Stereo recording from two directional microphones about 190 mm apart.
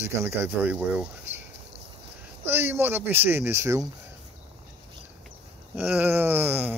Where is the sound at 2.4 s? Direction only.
10° right (ahead or behind).